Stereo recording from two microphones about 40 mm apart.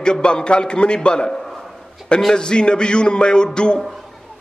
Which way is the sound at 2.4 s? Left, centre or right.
Left.